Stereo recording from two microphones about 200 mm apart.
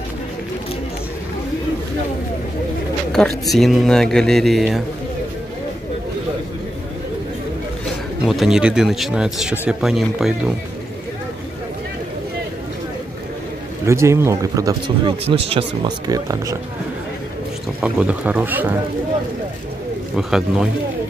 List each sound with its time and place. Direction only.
3.1 s speech: centre (ahead or behind)
8.3 s speech: centre (ahead or behind)
13.8 s speech: 15° right (ahead or behind)
15.2 s speech: 30° right (ahead or behind)
16.1 s speech: 15° right (ahead or behind)
17.8 s speech: 5° right (ahead or behind)
20.2 s speech: 5° right (ahead or behind)